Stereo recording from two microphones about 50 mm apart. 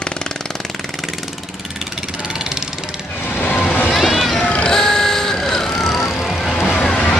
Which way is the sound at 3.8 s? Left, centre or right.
Centre.